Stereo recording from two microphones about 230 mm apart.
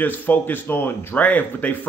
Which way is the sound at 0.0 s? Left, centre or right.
Centre.